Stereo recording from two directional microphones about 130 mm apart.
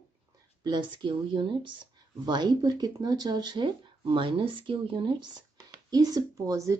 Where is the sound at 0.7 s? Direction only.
35° right (ahead or behind).